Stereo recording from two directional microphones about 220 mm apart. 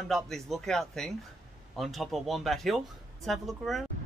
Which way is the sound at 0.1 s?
Centre (ahead or behind).